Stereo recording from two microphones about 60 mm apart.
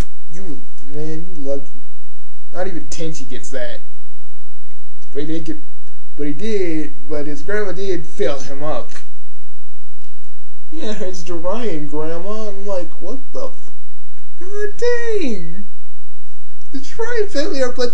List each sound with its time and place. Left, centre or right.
0.0 s a sound: centre
2.5 s a man's voice: centre
5.1 s a man's voice: centre
10.7 s a man's voice: centre
16.7 s a man's voice: centre